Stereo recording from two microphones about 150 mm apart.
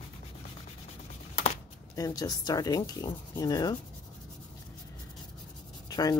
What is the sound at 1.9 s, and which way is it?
Speech, 25° left (ahead or behind).